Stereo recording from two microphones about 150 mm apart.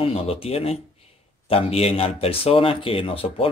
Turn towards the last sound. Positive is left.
turn(degrees=40)  # may be behind; listen again after turning